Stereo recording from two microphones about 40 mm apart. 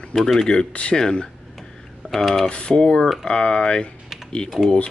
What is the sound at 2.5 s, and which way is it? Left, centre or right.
Speech, left.